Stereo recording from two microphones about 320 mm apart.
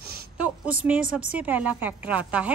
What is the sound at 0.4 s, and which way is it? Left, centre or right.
A woman's voice, centre.